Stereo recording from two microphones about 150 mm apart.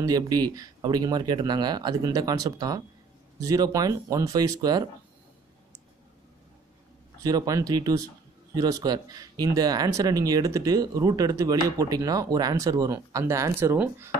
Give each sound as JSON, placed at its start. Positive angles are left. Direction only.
{"t": 0.0, "sound": "speech", "side_deg": -25}
{"t": 7.2, "sound": "speech", "side_deg": -25}